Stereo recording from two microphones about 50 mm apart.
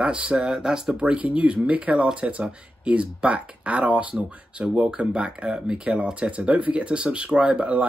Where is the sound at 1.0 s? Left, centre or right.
Right.